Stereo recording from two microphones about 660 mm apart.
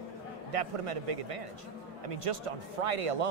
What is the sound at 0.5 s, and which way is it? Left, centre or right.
Speech, right.